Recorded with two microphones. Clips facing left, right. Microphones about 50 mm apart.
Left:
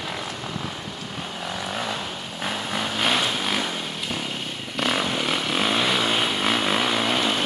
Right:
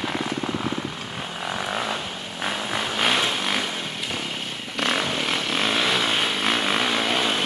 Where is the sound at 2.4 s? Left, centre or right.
Centre.